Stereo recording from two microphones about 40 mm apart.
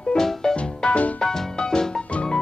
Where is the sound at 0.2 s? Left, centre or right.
Centre.